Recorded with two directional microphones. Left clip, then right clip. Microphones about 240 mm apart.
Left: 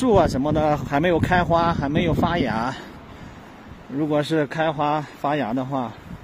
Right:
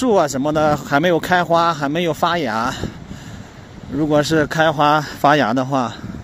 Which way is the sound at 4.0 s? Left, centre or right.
Right.